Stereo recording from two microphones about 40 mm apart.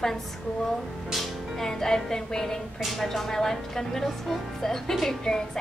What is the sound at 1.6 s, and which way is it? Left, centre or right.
Speech, centre.